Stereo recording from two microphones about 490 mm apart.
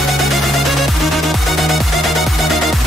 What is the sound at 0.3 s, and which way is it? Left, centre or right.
Music, centre.